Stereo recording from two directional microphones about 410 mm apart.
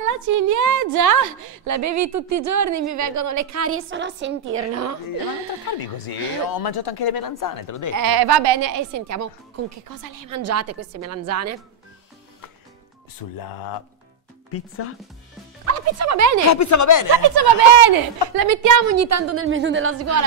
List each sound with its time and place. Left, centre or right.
0.0 s a woman's voice: right
5.9 s speech: left
7.9 s a woman's voice: right
8.7 s speech: right
13.2 s speech: left
14.5 s speech: left
15.6 s speech: right
16.4 s speech: left
17.1 s a woman's voice: right
18.3 s speech: right